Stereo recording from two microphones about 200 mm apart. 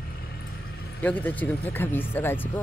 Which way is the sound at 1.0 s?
5° left (ahead or behind).